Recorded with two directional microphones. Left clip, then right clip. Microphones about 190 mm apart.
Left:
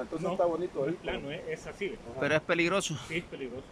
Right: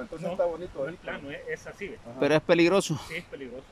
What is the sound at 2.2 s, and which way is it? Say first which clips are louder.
Speech: right 6 dB; 20° right (ahead or behind).